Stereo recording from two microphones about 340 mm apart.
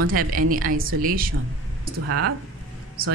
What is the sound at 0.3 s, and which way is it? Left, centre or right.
Speech, right.